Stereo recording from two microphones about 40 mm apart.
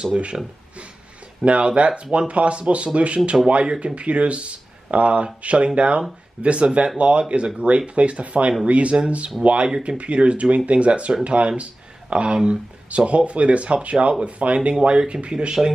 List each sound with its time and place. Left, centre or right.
0.0 s speech: right
1.4 s speech: right; by 15.7 s centre